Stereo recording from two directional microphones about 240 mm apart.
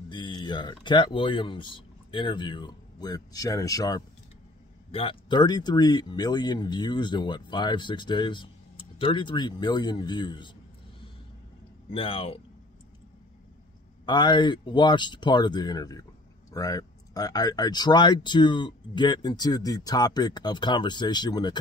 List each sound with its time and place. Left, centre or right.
0.1 s speech: centre
11.9 s speech: left
14.0 s speech: centre